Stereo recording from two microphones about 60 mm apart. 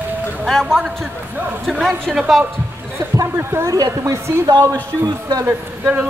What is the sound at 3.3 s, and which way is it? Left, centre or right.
Speech, right.